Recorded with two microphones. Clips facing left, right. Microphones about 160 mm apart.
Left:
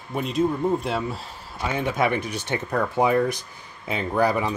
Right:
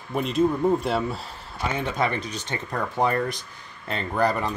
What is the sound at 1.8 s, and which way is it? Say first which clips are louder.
Speech: left 4 dB; 10° left (ahead or behind).